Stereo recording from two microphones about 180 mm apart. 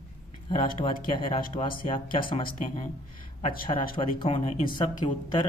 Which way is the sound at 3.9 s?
30° left (ahead or behind).